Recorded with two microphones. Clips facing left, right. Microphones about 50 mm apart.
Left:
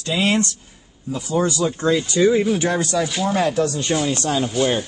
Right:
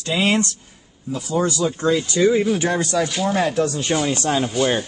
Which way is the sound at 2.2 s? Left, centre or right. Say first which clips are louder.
Even; centre.